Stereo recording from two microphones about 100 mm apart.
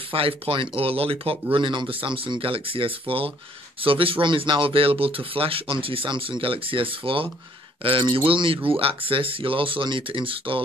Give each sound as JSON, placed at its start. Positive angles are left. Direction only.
{"t": 0.1, "sound": "speech", "side_deg": -65}